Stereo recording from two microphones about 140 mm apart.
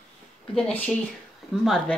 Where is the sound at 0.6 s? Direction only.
10° left (ahead or behind).